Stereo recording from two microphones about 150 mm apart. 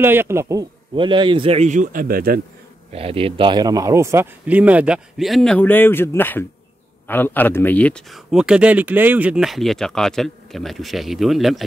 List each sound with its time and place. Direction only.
0.0 s a man's voice: 15° right (ahead or behind)
0.9 s speech: 35° right (ahead or behind); by 2.4 s 85° right
2.9 s a man's voice: 40° right (ahead or behind); by 11.6 s centre (ahead or behind)